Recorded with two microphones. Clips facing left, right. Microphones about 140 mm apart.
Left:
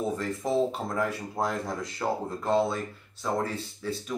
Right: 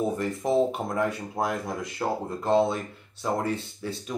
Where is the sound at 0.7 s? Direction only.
20° right (ahead or behind).